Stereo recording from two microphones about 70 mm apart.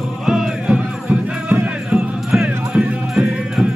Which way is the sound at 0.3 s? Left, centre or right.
Centre.